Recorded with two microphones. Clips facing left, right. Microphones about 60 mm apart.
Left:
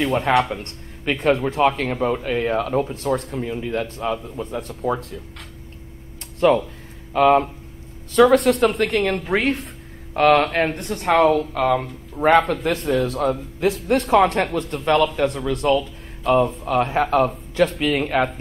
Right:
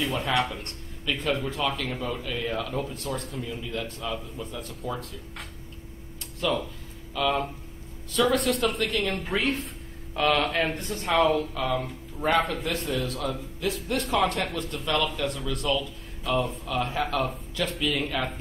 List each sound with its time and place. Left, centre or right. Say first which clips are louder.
0.0 s speech: left 8 dB; left
0.3 s speech: left 8 dB; left
6.4 s speech: left 11 dB; left
10.8 s speech: left 7 dB; left